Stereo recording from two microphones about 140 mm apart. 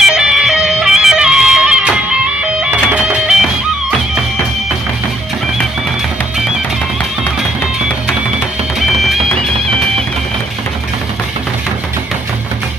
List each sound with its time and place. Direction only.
0.0 s music: 5° right (ahead or behind)
8.7 s music: centre (ahead or behind)